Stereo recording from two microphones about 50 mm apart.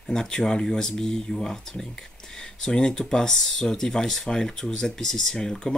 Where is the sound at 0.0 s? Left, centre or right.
Centre.